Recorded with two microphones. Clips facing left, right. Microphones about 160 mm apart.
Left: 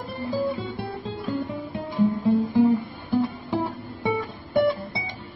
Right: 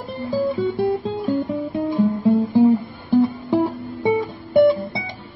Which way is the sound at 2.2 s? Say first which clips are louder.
Right 6 dB; 20° right (ahead or behind).